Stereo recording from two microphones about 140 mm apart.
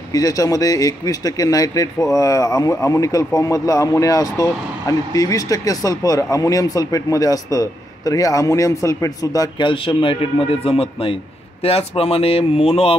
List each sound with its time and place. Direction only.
0.1 s speech: 25° left (ahead or behind); by 12.9 s 45° left (ahead or behind)